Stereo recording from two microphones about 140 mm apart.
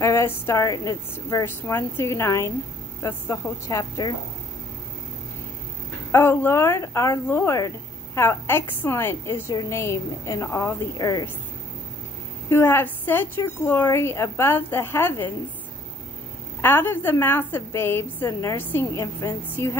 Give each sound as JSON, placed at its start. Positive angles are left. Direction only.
{"t": 0.0, "sound": "a woman's voice", "side_deg": 20}
{"t": 6.1, "sound": "a woman's voice", "side_deg": 15}
{"t": 12.4, "sound": "a woman's voice", "side_deg": 20}
{"t": 16.6, "sound": "a woman's voice", "side_deg": 15}